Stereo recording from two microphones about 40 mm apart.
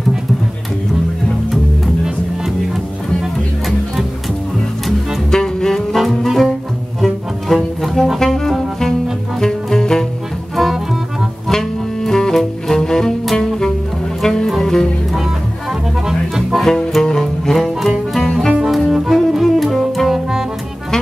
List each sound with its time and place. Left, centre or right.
2.4 s music: centre
5.3 s music: centre
5.9 s music: centre
10.5 s music: centre
16.1 s music: centre
16.6 s music: centre
18.7 s music: centre